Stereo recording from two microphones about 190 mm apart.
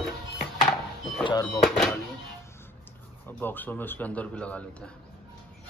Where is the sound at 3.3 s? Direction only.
10° left (ahead or behind).